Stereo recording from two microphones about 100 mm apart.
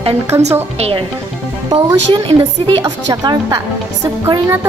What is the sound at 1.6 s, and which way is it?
Speech, 45° right (ahead or behind).